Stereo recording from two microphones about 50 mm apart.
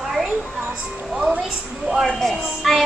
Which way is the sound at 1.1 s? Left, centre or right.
Right.